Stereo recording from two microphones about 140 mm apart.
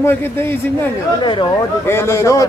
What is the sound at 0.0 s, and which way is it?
Speech, 15° left (ahead or behind).